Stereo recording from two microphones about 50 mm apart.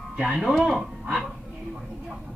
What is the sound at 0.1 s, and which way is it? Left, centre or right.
Speech, right.